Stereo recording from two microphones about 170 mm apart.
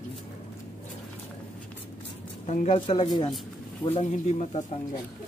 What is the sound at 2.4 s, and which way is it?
Speech, 45° left (ahead or behind).